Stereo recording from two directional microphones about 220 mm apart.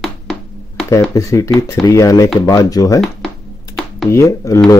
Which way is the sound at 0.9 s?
15° left (ahead or behind).